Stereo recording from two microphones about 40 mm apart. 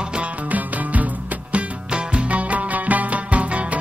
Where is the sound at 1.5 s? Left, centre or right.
Right.